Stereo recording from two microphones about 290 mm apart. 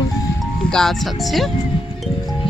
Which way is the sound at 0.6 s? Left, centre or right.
Centre.